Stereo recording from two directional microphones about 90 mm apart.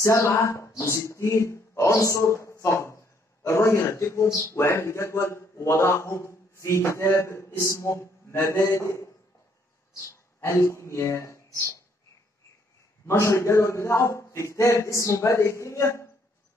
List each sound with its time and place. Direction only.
0.0 s a man's voice: 35° left (ahead or behind)
13.0 s a man's voice: 30° left (ahead or behind)